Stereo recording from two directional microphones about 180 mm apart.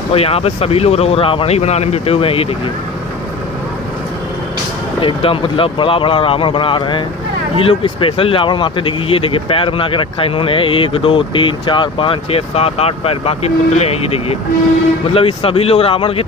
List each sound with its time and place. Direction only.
0.1 s speech: 35° left (ahead or behind)
5.0 s speech: 30° left (ahead or behind)